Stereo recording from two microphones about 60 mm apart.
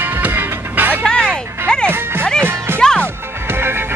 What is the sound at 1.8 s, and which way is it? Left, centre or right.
Music, right.